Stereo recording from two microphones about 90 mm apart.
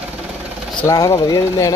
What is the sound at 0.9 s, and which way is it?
Speech, 45° left (ahead or behind).